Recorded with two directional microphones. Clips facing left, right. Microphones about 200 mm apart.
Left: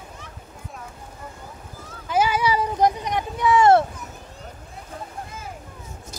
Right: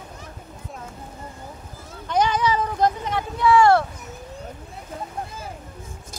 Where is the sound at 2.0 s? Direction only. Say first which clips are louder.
Even; 5° left (ahead or behind).